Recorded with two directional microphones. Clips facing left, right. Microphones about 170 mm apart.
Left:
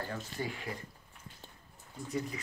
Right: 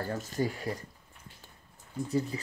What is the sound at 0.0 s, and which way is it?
Speech, 40° right (ahead or behind).